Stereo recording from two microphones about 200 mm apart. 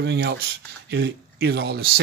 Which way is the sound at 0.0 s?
55° right (ahead or behind).